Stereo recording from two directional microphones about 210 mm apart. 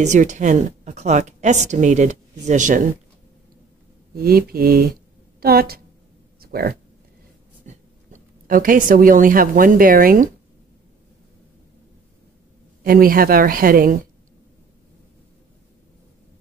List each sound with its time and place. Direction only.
0.0 s a woman's voice: 35° right (ahead or behind)
4.1 s a woman's voice: 45° right (ahead or behind)
12.8 s a woman's voice: 45° right (ahead or behind)